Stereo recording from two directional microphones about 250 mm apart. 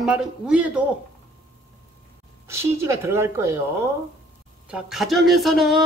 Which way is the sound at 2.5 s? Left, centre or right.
Centre.